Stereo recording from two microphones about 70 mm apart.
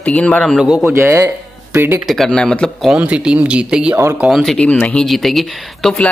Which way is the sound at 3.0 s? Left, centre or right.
Centre.